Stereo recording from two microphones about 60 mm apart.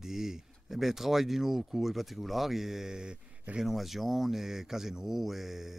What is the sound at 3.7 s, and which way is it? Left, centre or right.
Speech, centre.